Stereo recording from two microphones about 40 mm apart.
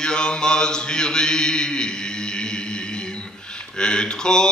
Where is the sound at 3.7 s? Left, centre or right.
Left.